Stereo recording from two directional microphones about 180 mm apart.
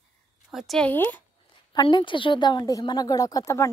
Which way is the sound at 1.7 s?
25° left (ahead or behind).